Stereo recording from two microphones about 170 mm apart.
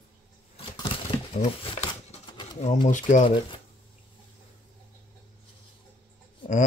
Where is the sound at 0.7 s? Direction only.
30° left (ahead or behind).